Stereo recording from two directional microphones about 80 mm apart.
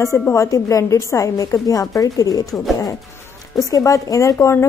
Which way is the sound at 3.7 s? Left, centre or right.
Left.